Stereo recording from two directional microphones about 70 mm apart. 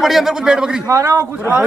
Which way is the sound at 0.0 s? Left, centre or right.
Centre.